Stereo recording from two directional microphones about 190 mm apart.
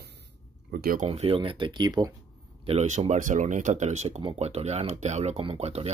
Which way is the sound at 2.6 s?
35° right (ahead or behind).